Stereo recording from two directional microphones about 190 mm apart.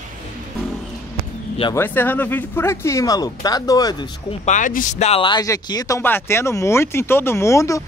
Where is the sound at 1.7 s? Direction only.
10° left (ahead or behind).